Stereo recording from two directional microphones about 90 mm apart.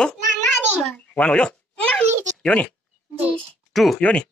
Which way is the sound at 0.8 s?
10° left (ahead or behind).